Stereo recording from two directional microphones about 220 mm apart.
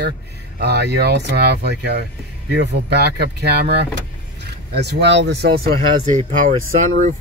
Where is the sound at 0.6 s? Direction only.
50° right (ahead or behind).